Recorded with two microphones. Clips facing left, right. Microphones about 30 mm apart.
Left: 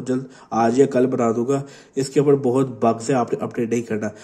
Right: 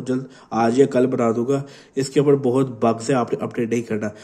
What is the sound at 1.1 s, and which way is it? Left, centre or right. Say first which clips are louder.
Speech: even; right.